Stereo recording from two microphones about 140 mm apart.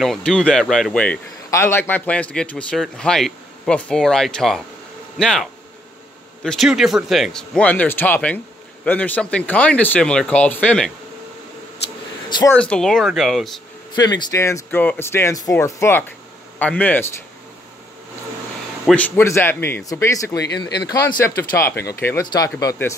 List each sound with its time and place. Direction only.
0.0 s a man's voice: 5° left (ahead or behind)
12.5 s a man's voice: 5° left (ahead or behind)
13.9 s speech: 30° left (ahead or behind); by 17.1 s 10° left (ahead or behind)
18.9 s speech: 10° left (ahead or behind)